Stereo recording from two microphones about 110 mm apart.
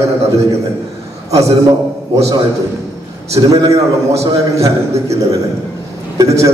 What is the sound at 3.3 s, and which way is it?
Speech, 30° right (ahead or behind).